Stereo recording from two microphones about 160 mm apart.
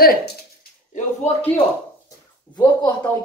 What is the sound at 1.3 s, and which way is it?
Speech, 45° left (ahead or behind).